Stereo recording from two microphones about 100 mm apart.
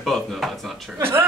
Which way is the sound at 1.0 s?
25° right (ahead or behind).